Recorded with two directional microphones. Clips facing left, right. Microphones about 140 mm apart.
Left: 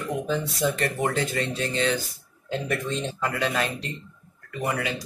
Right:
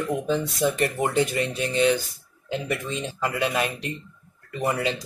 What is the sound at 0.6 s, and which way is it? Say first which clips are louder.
Speech: right 1 dB; 20° right (ahead or behind).